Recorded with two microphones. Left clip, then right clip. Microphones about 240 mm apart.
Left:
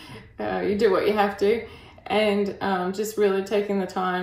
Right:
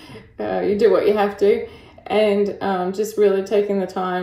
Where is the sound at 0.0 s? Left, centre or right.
Left.